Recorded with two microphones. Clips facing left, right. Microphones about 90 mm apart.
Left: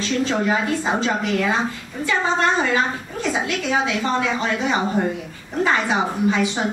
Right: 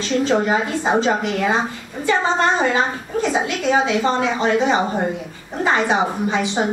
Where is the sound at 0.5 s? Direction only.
25° right (ahead or behind).